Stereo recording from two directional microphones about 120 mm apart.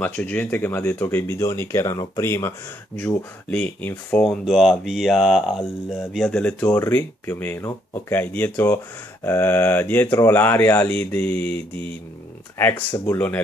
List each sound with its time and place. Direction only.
0.0 s speech: 15° left (ahead or behind)
3.5 s speech: 10° left (ahead or behind)
4.2 s speech: centre (ahead or behind)